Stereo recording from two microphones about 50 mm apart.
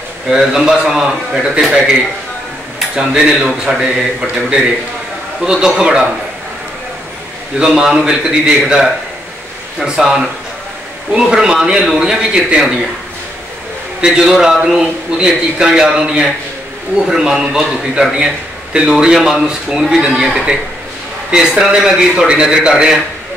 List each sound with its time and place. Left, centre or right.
0.3 s a man's voice: centre
3.0 s a man's voice: centre
7.5 s a man's voice: centre
14.2 s a man's voice: centre